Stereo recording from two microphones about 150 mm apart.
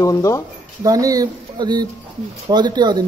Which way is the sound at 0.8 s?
25° right (ahead or behind).